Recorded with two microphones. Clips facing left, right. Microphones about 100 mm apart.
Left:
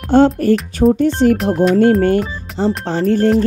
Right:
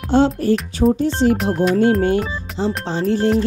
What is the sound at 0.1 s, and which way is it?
Speech, 55° left (ahead or behind).